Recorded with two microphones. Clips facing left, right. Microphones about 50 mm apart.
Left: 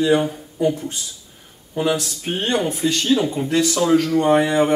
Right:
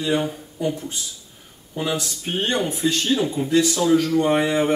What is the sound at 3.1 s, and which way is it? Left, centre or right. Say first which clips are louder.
Speech: even; left.